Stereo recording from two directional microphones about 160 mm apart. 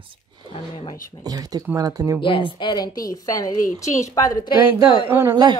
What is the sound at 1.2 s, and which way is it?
A woman's voice, 25° right (ahead or behind).